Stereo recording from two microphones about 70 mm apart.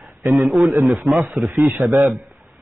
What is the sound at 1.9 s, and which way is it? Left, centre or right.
Speech, right.